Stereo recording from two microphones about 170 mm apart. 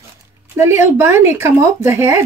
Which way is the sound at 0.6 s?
15° right (ahead or behind).